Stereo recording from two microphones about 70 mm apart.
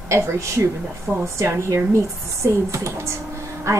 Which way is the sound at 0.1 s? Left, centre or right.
Right.